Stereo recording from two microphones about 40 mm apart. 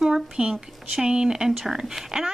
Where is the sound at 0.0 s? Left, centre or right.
Centre.